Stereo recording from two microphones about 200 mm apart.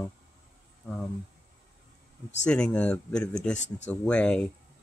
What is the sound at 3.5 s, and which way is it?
Speech, 35° left (ahead or behind).